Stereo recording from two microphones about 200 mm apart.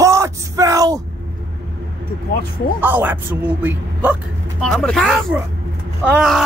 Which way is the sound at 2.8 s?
10° right (ahead or behind).